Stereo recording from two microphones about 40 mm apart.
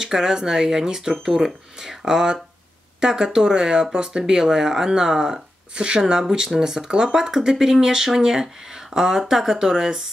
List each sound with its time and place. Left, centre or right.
0.0 s speech: centre
1.4 s speech: centre